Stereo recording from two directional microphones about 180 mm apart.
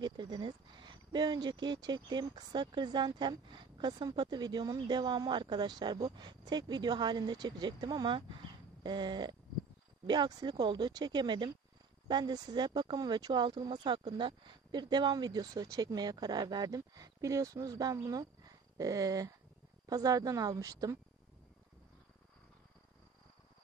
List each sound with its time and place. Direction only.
0.0 s speech: 25° right (ahead or behind)